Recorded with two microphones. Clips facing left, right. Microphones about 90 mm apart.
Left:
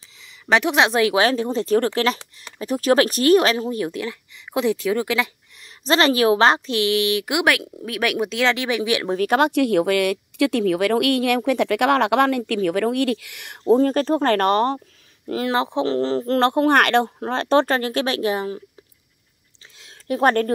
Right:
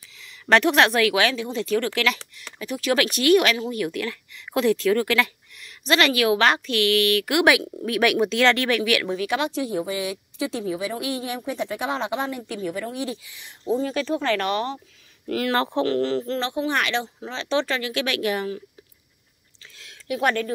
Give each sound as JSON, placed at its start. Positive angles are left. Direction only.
{"t": 0.2, "sound": "speech", "side_deg": 15}
{"t": 5.6, "sound": "speech", "side_deg": 30}
{"t": 7.4, "sound": "speech", "side_deg": 0}
{"t": 9.1, "sound": "speech", "side_deg": 50}
{"t": 15.2, "sound": "speech", "side_deg": 25}
{"t": 16.3, "sound": "speech", "side_deg": 55}
{"t": 20.1, "sound": "speech", "side_deg": 40}